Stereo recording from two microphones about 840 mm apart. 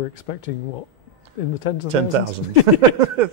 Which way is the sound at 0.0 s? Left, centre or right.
Left.